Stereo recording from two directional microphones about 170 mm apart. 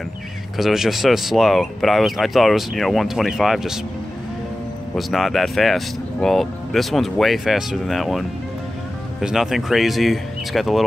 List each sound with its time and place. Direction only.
0.6 s speech: centre (ahead or behind)
4.9 s speech: centre (ahead or behind)